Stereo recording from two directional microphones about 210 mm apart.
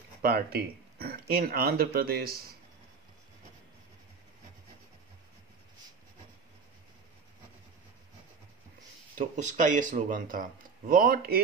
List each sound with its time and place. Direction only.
0.2 s speech: 45° right (ahead or behind)
9.2 s speech: 35° right (ahead or behind)